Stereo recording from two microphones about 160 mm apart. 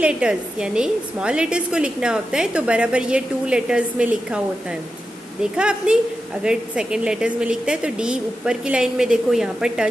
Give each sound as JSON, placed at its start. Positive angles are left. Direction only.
{"t": 0.0, "sound": "a woman's voice", "side_deg": -5}